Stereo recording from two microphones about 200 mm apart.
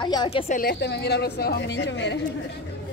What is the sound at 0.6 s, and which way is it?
A woman's voice, 50° left (ahead or behind).